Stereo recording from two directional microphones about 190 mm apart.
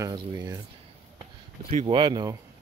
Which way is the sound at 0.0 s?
20° right (ahead or behind).